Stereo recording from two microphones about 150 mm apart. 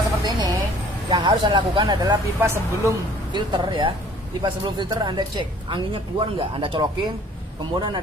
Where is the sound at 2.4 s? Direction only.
20° right (ahead or behind).